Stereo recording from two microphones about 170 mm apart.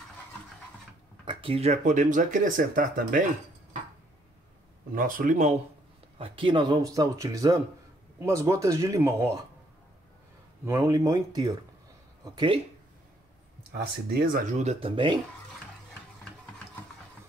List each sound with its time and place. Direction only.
1.2 s speech: 30° right (ahead or behind); by 3.3 s 50° right (ahead or behind)
4.9 s speech: 55° right (ahead or behind)
6.1 s speech: 30° right (ahead or behind)
10.6 s speech: 15° right (ahead or behind)
14.1 s speech: 60° right (ahead or behind); by 15.1 s 30° right (ahead or behind)